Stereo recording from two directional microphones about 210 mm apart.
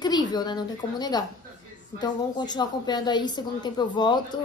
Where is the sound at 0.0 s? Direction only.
20° left (ahead or behind).